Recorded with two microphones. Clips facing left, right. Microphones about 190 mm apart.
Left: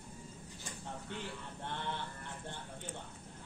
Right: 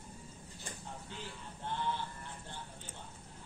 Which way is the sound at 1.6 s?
60° left (ahead or behind).